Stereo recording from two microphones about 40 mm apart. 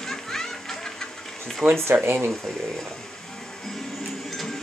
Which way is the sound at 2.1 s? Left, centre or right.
Right.